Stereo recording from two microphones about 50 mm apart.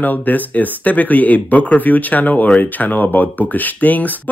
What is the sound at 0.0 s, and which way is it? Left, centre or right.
Speech, left.